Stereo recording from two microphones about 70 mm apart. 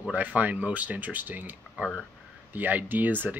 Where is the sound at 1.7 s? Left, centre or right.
Centre.